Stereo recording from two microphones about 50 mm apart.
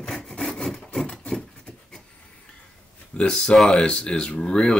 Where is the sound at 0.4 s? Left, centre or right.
Centre.